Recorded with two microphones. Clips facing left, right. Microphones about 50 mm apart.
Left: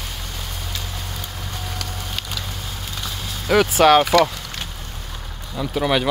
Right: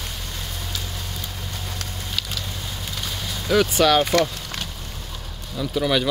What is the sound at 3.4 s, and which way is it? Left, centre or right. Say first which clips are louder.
Vehicle: left 2 dB; left.